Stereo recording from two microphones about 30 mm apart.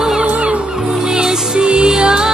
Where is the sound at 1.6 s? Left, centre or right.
Right.